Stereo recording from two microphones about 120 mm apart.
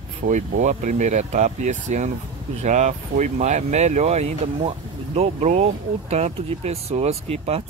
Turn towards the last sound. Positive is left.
turn(degrees=-60)  # may be behind; listen again after turning